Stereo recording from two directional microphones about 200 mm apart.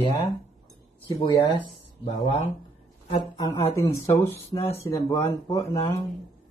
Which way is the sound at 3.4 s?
15° left (ahead or behind).